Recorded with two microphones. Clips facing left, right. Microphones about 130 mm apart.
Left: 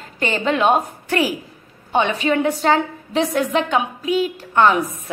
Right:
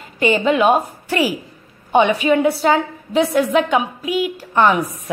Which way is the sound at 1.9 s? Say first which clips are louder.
Right 4 dB; 15° right (ahead or behind).